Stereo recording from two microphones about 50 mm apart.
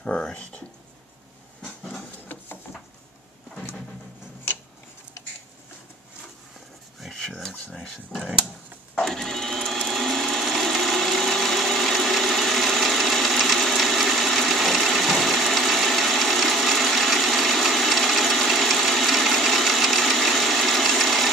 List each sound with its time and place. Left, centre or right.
0.0 s a sound: left
7.0 s rub: centre
9.0 s sewing machine: centre